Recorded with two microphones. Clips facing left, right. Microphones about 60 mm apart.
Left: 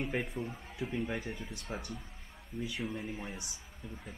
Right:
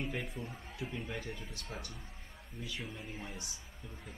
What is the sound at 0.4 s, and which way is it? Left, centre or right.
Speech, left.